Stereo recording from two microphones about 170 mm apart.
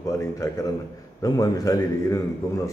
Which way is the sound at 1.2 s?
20° left (ahead or behind).